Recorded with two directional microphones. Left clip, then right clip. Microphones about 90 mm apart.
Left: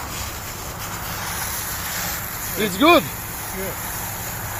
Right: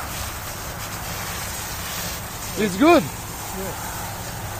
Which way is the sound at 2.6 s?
70° right (ahead or behind).